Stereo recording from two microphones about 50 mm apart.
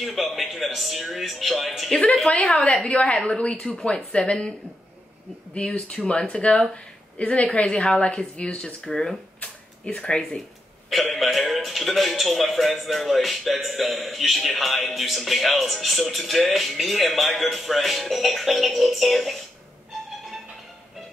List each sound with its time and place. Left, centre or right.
0.0 s speech: centre
2.2 s speech: left
11.1 s speech: centre